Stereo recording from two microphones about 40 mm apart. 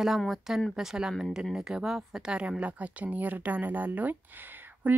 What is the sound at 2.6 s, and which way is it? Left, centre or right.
Speech, right.